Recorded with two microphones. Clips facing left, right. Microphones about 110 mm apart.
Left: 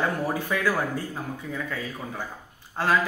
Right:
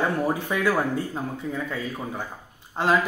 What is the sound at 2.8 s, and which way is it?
Speech, 20° right (ahead or behind).